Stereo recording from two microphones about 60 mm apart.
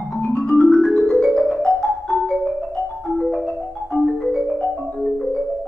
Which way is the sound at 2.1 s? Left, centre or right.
Centre.